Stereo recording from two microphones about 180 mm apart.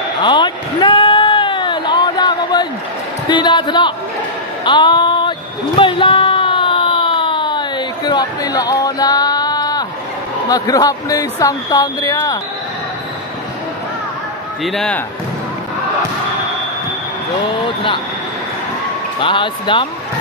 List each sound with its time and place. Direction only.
0.2 s a sound: 25° left (ahead or behind)
3.3 s speech: 25° left (ahead or behind)
4.6 s a sound: 25° left (ahead or behind)
10.5 s speech: 20° left (ahead or behind)
14.6 s speech: centre (ahead or behind)
19.1 s speech: 30° left (ahead or behind)